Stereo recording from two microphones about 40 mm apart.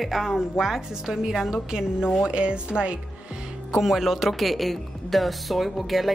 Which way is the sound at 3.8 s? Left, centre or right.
Centre.